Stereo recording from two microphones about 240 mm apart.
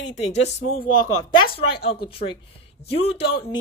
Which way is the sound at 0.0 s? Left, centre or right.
Left.